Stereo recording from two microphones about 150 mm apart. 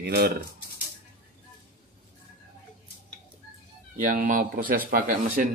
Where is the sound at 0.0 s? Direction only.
90° right.